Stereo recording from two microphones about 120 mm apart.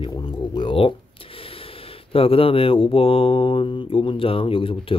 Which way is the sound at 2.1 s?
50° left (ahead or behind).